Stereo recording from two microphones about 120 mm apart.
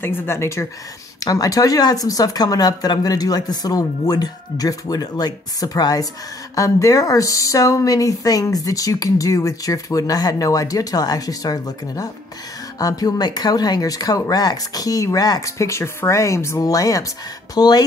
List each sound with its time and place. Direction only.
0.0 s speech: 20° left (ahead or behind)